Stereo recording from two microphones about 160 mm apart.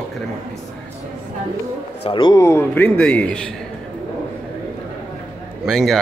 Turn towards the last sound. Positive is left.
turn(degrees=0)  # may be behind; listen again after turning